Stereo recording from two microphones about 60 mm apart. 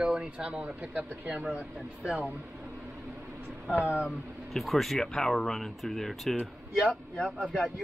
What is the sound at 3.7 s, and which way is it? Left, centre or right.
Speech, right.